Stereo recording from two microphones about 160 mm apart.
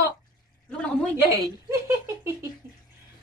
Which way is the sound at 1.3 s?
20° right (ahead or behind).